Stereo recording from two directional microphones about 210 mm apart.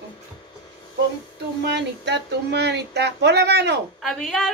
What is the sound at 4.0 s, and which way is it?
Speech, centre (ahead or behind).